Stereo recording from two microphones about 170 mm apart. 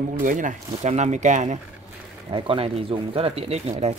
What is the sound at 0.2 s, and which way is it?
Speech, 50° right (ahead or behind).